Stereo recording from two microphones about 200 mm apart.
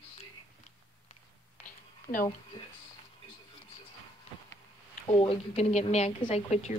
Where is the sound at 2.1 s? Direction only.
30° left (ahead or behind).